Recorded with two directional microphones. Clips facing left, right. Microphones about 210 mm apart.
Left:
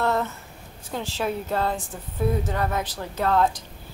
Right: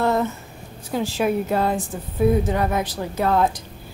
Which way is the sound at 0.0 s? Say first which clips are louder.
Right 4 dB; 15° right (ahead or behind).